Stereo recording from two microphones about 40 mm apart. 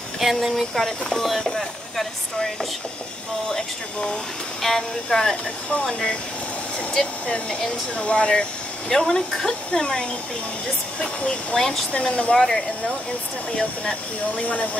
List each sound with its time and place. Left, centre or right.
0.2 s speech: centre
0.7 s speech: centre
3.4 s speech: left
4.6 s speech: centre
11.9 s speech: left
12.4 s speech: centre